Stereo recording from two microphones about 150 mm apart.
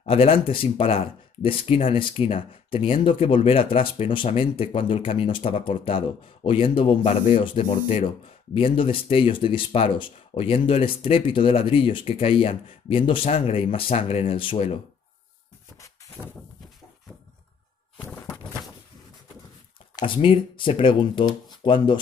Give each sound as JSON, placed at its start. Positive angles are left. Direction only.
{"t": 0.0, "sound": "speech", "side_deg": 40}
{"t": 16.2, "sound": "a sound", "side_deg": -10}
{"t": 20.0, "sound": "speech", "side_deg": 35}